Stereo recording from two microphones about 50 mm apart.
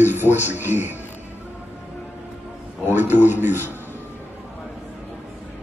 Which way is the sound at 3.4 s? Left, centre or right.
Right.